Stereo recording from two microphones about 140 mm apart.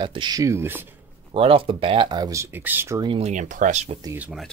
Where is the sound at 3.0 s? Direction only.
35° right (ahead or behind).